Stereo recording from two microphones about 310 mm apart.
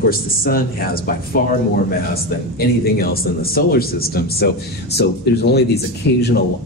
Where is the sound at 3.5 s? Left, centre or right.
Left.